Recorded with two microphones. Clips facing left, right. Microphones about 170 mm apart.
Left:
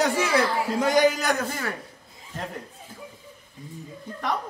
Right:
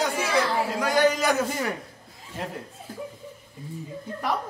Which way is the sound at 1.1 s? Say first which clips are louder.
Right 2 dB; centre (ahead or behind).